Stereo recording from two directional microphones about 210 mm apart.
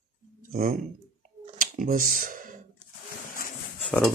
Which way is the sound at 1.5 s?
40° right (ahead or behind).